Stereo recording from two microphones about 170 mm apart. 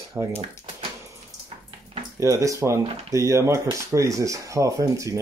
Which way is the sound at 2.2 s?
20° right (ahead or behind).